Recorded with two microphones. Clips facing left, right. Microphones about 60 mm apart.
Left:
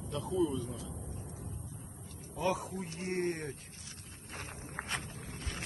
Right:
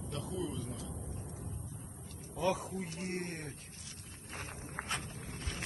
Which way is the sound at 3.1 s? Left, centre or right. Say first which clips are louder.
Left 6 dB; left.